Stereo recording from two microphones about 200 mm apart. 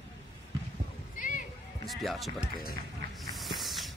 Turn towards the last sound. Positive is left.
turn(degrees=0)  # may be behind; listen again after turning